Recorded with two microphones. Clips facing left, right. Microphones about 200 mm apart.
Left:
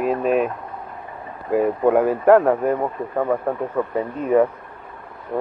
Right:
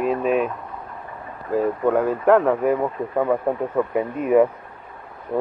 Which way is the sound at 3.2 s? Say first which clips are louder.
Right 1 dB; 10° right (ahead or behind).